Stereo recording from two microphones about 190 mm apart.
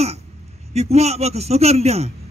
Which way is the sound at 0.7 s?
35° right (ahead or behind).